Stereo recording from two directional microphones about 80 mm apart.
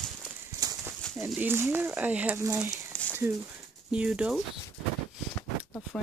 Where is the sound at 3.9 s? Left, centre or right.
Centre.